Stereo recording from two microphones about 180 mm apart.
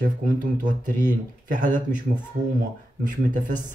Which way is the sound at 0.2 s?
45° right (ahead or behind).